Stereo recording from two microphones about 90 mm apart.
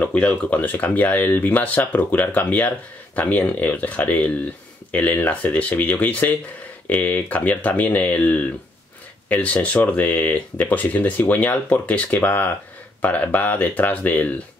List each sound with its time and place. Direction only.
0.0 s speech: 15° left (ahead or behind)